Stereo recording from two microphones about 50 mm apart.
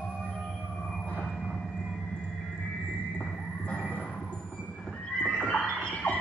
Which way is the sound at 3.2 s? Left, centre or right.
Left.